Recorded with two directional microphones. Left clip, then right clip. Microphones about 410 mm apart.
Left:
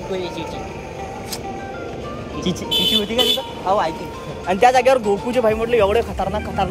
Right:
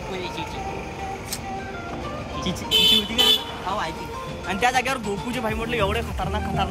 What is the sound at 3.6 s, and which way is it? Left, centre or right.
Speech, centre.